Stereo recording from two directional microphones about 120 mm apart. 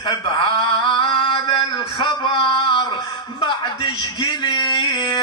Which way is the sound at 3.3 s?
40° left (ahead or behind).